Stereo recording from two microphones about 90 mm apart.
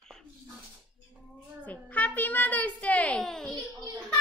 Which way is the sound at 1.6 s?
15° left (ahead or behind).